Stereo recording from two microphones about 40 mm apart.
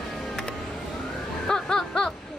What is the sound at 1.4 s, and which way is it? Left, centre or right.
Snicker, centre.